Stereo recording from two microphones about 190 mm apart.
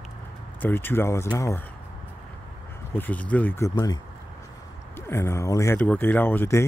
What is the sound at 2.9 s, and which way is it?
Speech, 10° left (ahead or behind).